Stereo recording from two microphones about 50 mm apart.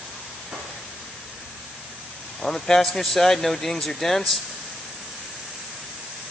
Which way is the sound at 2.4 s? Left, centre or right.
Centre.